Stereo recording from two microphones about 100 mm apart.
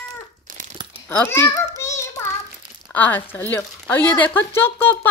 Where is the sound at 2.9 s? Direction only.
15° left (ahead or behind).